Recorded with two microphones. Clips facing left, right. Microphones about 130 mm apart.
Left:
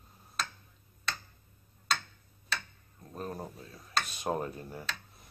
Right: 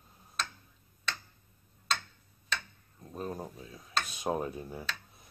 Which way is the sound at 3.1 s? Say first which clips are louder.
Right 1 dB; centre (ahead or behind).